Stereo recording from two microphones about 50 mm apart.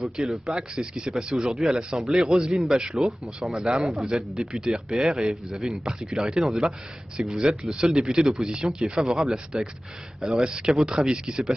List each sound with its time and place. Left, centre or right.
0.0 s speech: centre